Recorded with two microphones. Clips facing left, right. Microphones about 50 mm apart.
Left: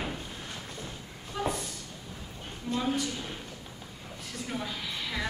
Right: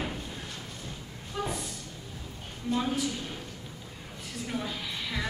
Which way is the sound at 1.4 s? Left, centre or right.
Centre.